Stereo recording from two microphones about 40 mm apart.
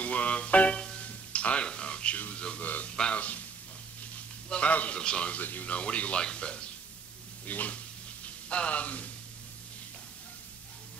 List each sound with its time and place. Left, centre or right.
0.0 s music: left
0.7 s music: left
1.0 s music: left
2.3 s a sound: left
2.6 s a sound: left
4.5 s a man's voice: left
5.4 s speech: left
5.7 s a man's voice: left
7.4 s frying: left